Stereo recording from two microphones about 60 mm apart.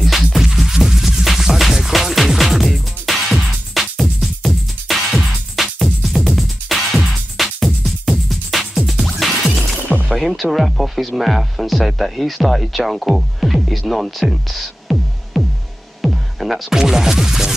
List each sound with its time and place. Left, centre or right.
0.0 s music: centre
9.8 s music: centre
10.1 s speech: centre
14.3 s music: centre
16.0 s speech: centre